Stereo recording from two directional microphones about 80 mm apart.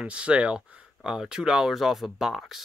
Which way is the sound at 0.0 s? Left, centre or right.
Centre.